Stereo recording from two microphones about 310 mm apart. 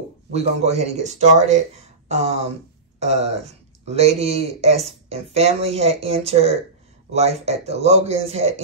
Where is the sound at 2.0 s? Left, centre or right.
Right.